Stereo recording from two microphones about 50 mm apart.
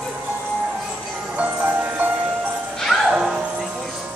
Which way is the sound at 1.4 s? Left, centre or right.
Right.